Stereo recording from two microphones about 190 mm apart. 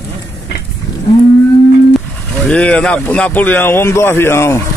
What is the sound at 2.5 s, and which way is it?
Speech, 5° left (ahead or behind).